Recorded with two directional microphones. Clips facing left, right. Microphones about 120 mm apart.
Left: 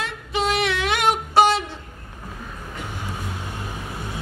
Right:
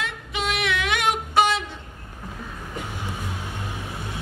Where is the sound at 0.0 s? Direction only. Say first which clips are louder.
Left 4 dB; 35° left (ahead or behind).